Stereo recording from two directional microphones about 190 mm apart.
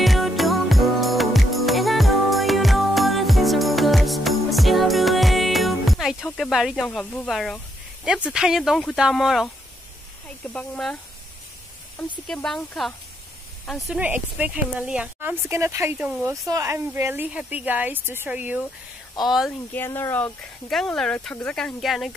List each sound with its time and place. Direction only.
0.0 s music: centre (ahead or behind)
10.5 s speech: 5° left (ahead or behind)
12.0 s speech: 5° left (ahead or behind)
19.7 s speech: 10° left (ahead or behind)